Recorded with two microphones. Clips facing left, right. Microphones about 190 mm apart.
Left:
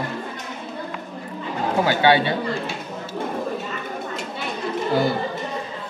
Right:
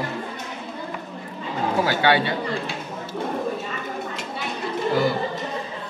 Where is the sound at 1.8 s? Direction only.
20° left (ahead or behind).